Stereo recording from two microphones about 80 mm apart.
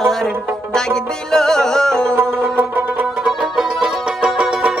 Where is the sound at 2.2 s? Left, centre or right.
Right.